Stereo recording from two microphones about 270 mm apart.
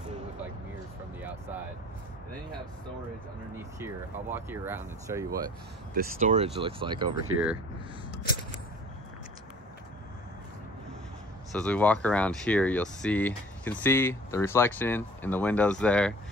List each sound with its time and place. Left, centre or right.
3.8 s speech: centre
5.9 s speech: right
11.5 s speech: centre